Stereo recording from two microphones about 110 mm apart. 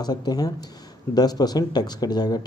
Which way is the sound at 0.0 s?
40° left (ahead or behind).